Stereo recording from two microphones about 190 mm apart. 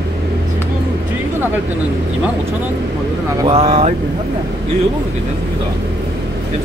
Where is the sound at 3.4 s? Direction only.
30° right (ahead or behind).